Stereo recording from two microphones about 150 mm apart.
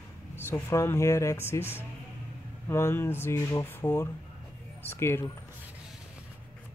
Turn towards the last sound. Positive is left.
turn(degrees=15)  # may be behind; listen again after turning